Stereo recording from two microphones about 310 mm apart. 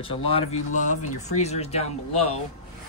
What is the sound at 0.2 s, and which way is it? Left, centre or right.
Speech, centre.